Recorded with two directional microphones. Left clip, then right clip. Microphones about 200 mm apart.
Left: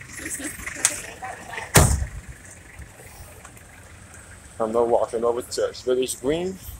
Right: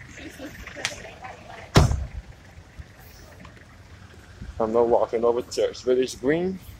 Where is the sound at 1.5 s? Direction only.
45° left (ahead or behind).